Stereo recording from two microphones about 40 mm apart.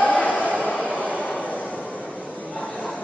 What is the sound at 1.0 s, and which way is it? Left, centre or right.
Vehicle, left.